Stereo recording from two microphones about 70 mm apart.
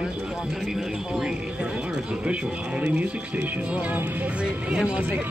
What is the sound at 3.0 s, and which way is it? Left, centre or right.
Speech, right.